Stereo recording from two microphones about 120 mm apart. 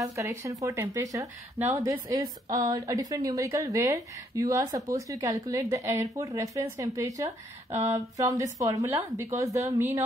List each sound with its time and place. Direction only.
0.0 s a woman's voice: 25° right (ahead or behind)